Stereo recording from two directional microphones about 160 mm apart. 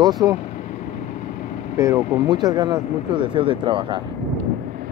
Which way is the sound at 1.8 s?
20° right (ahead or behind).